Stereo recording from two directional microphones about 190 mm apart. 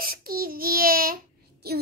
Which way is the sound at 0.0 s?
50° right (ahead or behind).